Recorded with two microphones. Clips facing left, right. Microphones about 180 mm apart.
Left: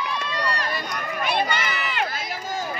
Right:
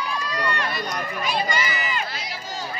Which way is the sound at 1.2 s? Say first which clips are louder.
Left 2 dB; 60° left (ahead or behind).